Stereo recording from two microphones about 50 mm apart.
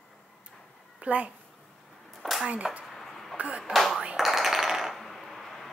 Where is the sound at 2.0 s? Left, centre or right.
Centre.